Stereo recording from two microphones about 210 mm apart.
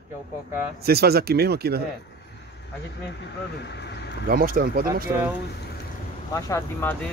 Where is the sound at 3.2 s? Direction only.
55° left (ahead or behind).